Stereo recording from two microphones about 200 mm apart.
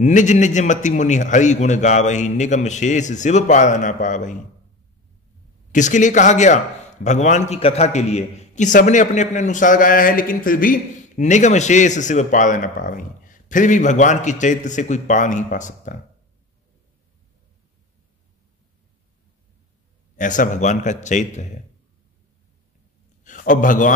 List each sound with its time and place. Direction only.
0.0 s a man's voice: 35° left (ahead or behind)
5.7 s a man's voice: 40° left (ahead or behind)
20.2 s a man's voice: 40° left (ahead or behind)
23.2 s a man's voice: 40° left (ahead or behind)